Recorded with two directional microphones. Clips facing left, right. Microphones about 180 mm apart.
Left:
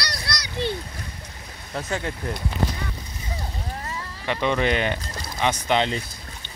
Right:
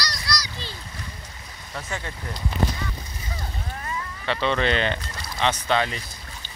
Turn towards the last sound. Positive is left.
turn(degrees=25)  # may be behind; listen again after turning